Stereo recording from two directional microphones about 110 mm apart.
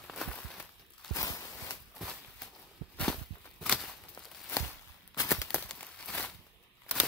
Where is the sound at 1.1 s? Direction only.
30° left (ahead or behind).